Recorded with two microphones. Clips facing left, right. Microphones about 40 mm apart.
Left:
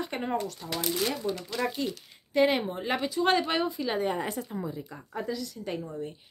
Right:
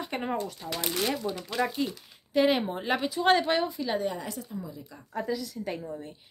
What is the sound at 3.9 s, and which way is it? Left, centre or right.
A woman's voice, left.